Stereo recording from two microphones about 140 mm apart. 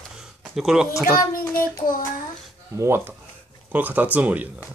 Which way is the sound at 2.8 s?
20° right (ahead or behind).